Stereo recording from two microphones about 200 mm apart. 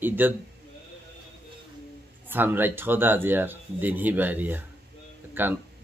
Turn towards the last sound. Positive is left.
turn(degrees=-10)  # may be behind; listen again after turning